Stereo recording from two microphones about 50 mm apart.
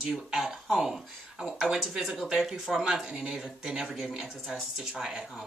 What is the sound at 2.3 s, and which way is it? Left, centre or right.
Speech, centre.